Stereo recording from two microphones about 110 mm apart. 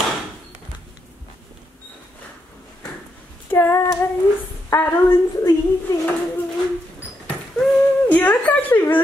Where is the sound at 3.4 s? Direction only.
20° left (ahead or behind).